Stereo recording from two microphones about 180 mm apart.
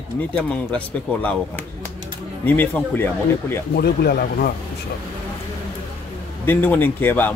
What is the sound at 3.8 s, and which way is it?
Speech, 60° left (ahead or behind).